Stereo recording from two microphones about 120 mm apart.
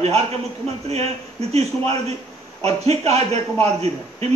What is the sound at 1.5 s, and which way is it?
A man's voice, 60° right (ahead or behind).